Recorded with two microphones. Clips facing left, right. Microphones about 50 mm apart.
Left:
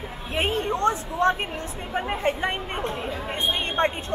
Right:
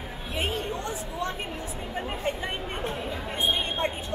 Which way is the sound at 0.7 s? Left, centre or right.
Left.